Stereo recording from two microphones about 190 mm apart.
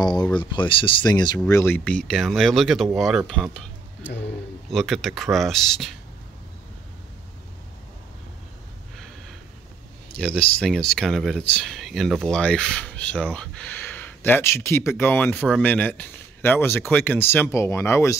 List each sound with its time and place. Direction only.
0.0 s speech: 20° left (ahead or behind); by 3.4 s centre (ahead or behind)
4.6 s speech: centre (ahead or behind)
10.1 s speech: 5° left (ahead or behind)